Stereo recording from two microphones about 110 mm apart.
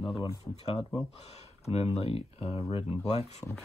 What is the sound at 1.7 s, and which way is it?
Speech, 70° left (ahead or behind).